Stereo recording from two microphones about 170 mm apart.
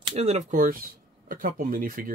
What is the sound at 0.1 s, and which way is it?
Speech, 40° right (ahead or behind).